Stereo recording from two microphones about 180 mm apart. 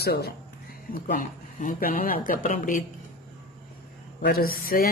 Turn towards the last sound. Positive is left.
turn(degrees=55)  # may be behind; listen again after turning